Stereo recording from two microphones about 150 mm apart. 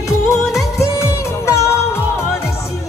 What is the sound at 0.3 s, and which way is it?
Music, 20° left (ahead or behind).